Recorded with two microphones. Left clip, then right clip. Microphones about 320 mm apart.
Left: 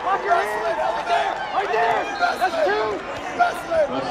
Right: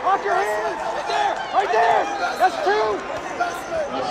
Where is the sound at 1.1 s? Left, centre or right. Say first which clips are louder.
Even; right.